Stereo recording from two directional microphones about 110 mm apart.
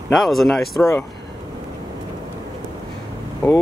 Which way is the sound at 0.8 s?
25° left (ahead or behind).